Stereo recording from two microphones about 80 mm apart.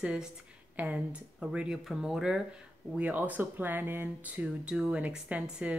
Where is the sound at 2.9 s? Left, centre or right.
Centre.